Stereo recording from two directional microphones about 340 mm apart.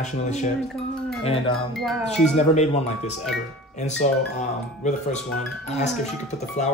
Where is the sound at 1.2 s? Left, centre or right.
Centre.